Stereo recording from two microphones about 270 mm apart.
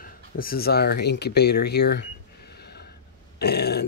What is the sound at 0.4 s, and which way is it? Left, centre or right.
Speech, left.